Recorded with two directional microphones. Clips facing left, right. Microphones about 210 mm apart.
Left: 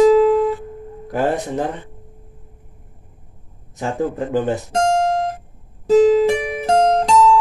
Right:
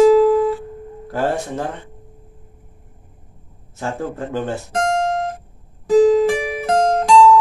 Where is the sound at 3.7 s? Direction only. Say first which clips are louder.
Left 3 dB; 15° left (ahead or behind).